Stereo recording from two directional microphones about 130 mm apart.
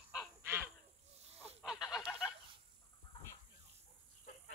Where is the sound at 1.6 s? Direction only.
5° right (ahead or behind).